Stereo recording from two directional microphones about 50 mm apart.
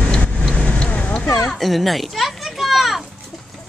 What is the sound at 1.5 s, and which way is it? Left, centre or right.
Children playing, centre.